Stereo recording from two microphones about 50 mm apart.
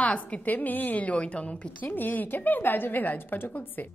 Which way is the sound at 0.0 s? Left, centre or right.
Left.